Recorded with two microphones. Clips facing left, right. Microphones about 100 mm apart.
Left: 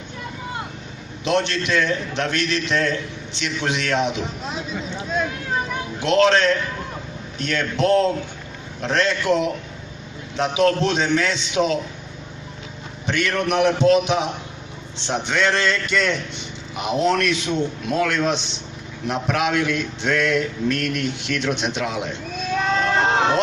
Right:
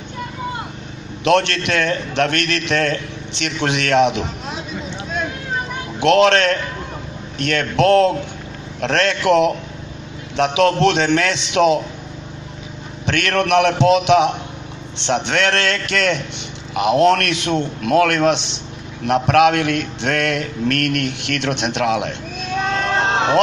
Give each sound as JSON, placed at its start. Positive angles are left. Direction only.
{"t": 1.2, "sound": "a man's voice", "side_deg": -70}
{"t": 5.9, "sound": "a man's voice", "side_deg": -70}
{"t": 13.0, "sound": "a man's voice", "side_deg": -70}
{"t": 22.6, "sound": "a sound", "side_deg": 5}